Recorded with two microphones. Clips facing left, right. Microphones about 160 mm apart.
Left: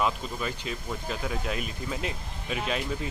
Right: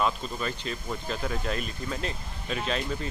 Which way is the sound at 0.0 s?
10° left (ahead or behind).